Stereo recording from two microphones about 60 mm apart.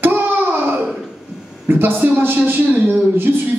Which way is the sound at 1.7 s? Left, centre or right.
Right.